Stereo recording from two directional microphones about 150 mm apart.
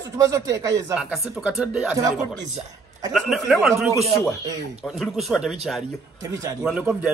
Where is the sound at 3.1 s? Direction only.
Centre (ahead or behind).